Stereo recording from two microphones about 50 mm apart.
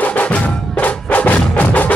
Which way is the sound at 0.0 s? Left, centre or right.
Left.